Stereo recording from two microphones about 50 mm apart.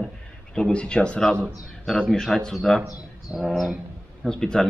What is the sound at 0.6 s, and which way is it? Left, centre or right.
Speech, centre.